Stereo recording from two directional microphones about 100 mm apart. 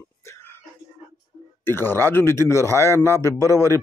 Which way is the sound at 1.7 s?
25° left (ahead or behind).